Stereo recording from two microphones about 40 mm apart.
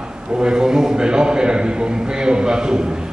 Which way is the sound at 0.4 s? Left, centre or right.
Right.